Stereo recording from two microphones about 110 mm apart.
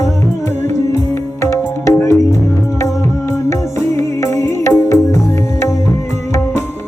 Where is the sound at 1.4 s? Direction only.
25° left (ahead or behind).